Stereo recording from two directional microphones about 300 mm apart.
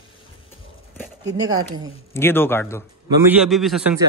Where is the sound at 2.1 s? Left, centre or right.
Centre.